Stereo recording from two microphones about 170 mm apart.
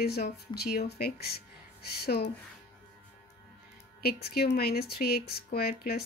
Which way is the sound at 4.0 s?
70° left (ahead or behind).